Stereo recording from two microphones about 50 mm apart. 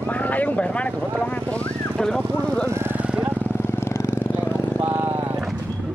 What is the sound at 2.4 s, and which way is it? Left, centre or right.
Speech, left.